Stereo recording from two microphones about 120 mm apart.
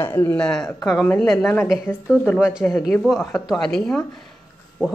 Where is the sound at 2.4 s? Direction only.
5° right (ahead or behind).